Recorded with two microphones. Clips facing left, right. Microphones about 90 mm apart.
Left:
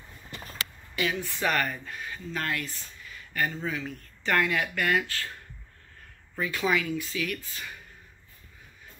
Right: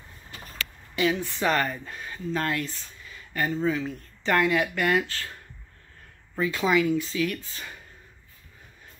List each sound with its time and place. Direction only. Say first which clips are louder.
0.9 s speech: right 5 dB; 25° right (ahead or behind)
6.4 s speech: right 4 dB; 25° right (ahead or behind)